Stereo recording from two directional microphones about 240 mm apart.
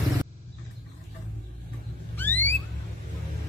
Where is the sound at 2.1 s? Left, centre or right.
Centre.